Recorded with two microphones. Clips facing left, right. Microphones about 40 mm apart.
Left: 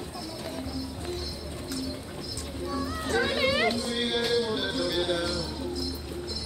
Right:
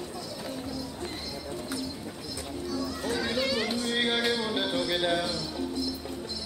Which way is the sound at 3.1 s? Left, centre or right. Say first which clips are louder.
Left 4 dB; left.